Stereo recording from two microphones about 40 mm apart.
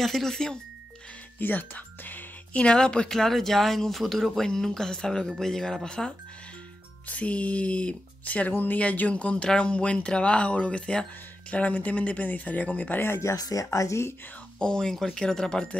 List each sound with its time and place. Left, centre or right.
0.0 s speech: centre
1.4 s speech: left
2.5 s speech: left
7.1 s speech: left
8.5 s speech: left
8.7 s speech: left
11.5 s speech: left
12.2 s speech: left
14.6 s speech: centre